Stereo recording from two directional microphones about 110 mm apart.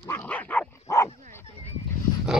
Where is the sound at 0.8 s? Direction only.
30° left (ahead or behind).